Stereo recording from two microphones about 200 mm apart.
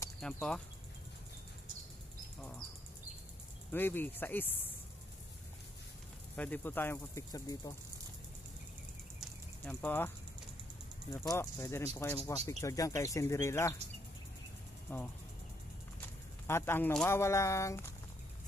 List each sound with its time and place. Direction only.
0.2 s speech: 5° left (ahead or behind)
3.7 s speech: 10° left (ahead or behind)
6.3 s speech: 10° left (ahead or behind)
9.7 s speech: 10° left (ahead or behind)
14.9 s speech: 10° left (ahead or behind)